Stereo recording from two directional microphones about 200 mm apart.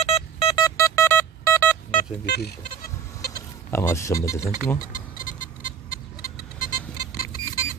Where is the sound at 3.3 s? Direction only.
15° left (ahead or behind).